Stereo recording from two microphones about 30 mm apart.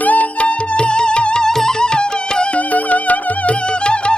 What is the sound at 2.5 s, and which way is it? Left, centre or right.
Music, left.